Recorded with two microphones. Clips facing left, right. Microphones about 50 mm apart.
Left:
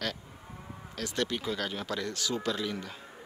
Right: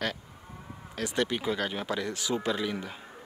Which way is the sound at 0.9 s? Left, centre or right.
Centre.